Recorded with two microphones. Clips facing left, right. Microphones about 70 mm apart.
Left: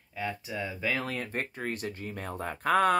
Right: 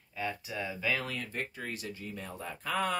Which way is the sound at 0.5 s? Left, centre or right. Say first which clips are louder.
Left 2 dB; centre.